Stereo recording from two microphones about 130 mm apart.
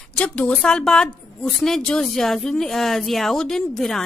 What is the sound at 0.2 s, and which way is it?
A woman's voice, 10° left (ahead or behind).